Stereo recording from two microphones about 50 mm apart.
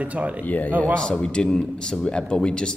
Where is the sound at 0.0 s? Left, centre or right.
Right.